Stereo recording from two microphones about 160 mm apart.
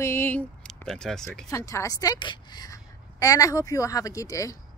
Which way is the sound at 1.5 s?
20° left (ahead or behind).